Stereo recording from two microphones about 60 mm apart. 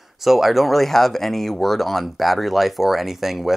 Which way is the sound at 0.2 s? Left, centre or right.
Centre.